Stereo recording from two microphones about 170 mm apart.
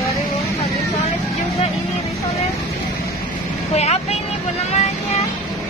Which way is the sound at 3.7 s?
40° left (ahead or behind).